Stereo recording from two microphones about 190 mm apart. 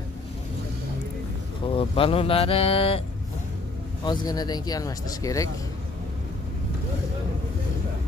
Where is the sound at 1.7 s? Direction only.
30° left (ahead or behind).